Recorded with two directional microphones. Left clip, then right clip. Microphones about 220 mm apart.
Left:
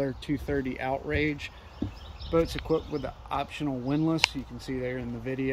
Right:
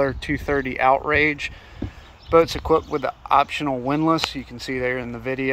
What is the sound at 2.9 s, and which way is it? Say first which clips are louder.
Speech: right 13 dB; 35° right (ahead or behind).